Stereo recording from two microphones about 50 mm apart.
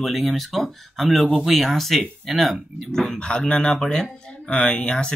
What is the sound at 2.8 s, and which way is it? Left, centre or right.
Speech, centre.